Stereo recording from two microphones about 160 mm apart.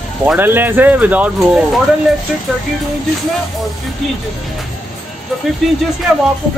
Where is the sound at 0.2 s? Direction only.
10° right (ahead or behind).